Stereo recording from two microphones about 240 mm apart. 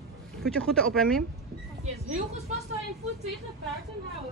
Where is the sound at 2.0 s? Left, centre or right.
Right.